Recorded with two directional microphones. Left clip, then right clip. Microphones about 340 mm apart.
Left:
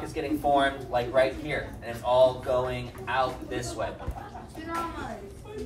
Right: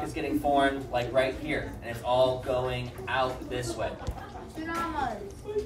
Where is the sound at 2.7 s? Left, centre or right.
Centre.